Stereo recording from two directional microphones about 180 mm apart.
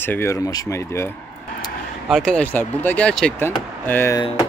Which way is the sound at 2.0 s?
Centre (ahead or behind).